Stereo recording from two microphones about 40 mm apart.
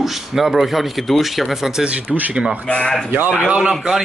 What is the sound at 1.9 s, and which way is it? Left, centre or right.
Speech, right.